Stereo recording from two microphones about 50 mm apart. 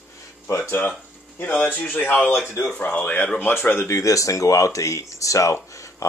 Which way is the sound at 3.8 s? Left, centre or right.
Left.